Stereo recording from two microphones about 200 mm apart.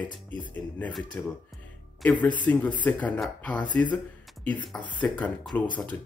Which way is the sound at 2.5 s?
5° left (ahead or behind).